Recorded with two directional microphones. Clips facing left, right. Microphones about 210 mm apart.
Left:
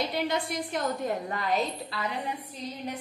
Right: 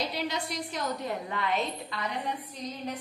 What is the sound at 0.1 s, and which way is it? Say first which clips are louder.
A woman's voice: left 4 dB; 55° left (ahead or behind).